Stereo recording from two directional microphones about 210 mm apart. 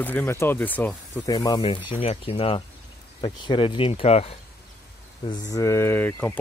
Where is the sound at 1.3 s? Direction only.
20° left (ahead or behind).